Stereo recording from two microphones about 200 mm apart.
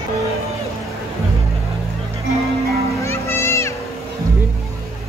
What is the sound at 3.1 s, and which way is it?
Music, 15° left (ahead or behind).